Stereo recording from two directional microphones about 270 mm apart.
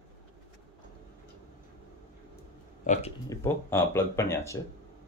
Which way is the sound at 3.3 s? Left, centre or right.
Centre.